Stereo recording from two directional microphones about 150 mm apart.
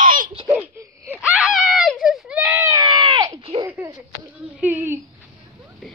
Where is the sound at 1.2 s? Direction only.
5° right (ahead or behind).